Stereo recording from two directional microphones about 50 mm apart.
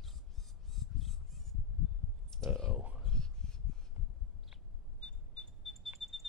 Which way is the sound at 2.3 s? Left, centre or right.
Centre.